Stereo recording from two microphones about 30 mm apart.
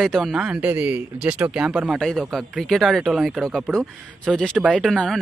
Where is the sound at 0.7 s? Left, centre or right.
Right.